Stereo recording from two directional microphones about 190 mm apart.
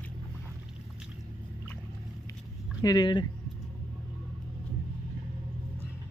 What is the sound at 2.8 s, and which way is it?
Speech, 20° left (ahead or behind).